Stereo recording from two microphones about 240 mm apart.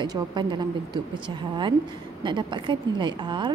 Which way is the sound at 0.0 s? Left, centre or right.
Centre.